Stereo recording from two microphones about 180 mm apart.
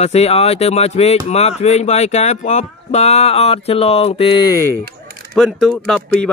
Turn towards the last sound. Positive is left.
turn(degrees=5)  # may be behind; listen again after turning